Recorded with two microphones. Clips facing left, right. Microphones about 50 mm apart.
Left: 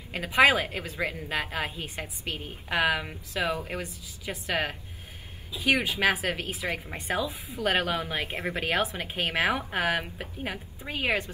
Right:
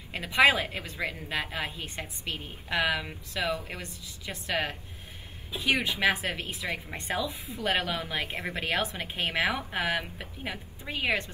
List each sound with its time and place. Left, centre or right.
0.4 s a woman's voice: centre; by 3.6 s left
3.7 s a woman's voice: centre
6.5 s a woman's voice: centre
7.5 s a woman's voice: centre